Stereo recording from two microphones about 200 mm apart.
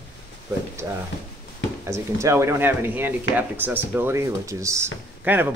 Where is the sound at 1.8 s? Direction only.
15° right (ahead or behind).